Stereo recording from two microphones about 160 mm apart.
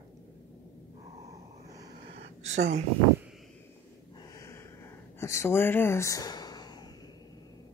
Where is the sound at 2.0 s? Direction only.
90° right.